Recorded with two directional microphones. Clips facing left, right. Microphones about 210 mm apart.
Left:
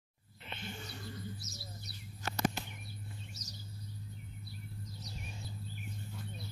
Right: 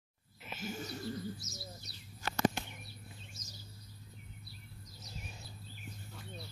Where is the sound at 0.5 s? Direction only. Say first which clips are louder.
Right 4 dB; 5° right (ahead or behind).